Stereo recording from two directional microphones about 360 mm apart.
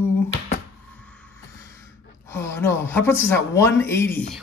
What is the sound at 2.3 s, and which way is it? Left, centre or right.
Speech, centre.